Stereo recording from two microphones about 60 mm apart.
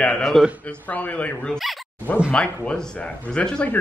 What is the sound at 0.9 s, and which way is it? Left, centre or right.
Speech, left.